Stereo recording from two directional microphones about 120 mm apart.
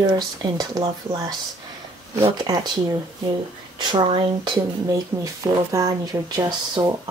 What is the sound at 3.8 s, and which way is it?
Speech, 40° right (ahead or behind).